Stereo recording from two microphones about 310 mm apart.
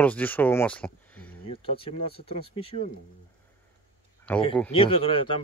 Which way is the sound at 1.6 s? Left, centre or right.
Centre.